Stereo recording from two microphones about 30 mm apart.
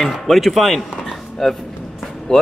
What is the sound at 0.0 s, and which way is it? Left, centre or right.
Speech, centre.